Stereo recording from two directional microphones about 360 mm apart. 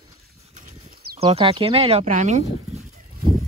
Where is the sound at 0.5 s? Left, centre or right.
Centre.